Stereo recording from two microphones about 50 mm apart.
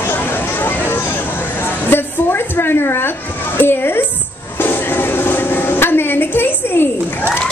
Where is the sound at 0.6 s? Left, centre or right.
Left.